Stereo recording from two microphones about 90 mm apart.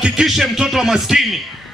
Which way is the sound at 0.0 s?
5° right (ahead or behind).